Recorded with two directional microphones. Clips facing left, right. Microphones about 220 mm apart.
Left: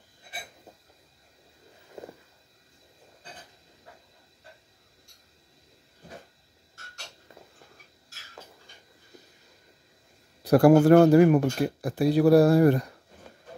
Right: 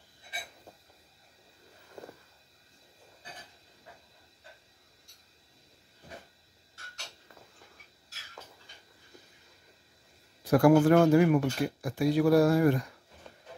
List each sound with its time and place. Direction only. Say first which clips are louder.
10.4 s speech: left 4 dB; 35° left (ahead or behind)